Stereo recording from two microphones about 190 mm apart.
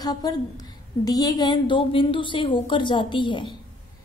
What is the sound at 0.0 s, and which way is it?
A woman's voice, 20° left (ahead or behind).